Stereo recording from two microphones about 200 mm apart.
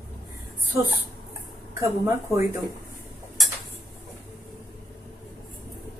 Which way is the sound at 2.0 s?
15° right (ahead or behind).